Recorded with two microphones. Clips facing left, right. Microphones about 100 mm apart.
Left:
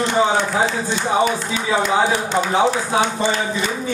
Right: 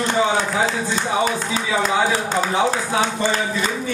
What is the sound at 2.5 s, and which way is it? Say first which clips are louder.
Speech: left 4 dB; 30° left (ahead or behind).